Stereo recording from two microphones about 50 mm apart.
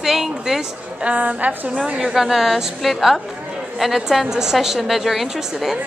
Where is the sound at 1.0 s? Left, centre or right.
Right.